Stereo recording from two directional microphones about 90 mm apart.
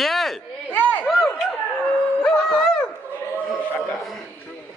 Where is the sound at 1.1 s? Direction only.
5° left (ahead or behind).